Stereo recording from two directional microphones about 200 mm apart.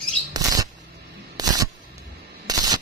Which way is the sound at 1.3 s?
20° right (ahead or behind).